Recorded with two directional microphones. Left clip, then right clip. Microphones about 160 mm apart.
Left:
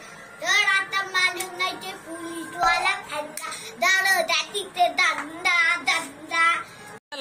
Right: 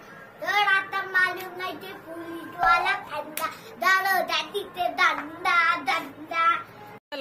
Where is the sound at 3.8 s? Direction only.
20° right (ahead or behind).